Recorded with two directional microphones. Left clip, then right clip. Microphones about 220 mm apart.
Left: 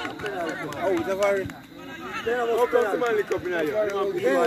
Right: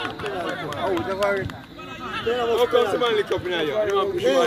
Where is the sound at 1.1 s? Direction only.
50° left (ahead or behind).